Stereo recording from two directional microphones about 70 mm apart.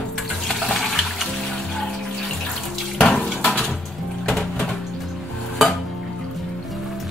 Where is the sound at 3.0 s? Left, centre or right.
Centre.